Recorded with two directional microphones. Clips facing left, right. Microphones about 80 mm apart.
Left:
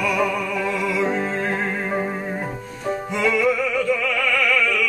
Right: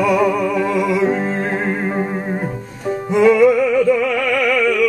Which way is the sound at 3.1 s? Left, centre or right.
Right.